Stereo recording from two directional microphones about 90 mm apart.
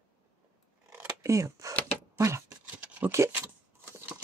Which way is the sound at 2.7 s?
15° right (ahead or behind).